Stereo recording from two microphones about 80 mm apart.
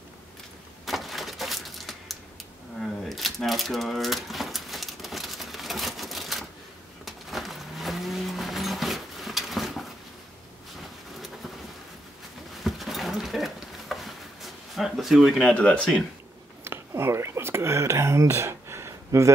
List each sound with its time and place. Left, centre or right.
0.8 s a sound: centre
2.8 s typewriter: centre
7.1 s vehicle: centre
12.6 s a sound: centre
15.4 s speech: centre
16.6 s whispering: right